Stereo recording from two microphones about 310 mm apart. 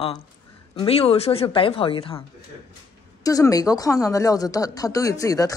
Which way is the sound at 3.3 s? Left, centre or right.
Centre.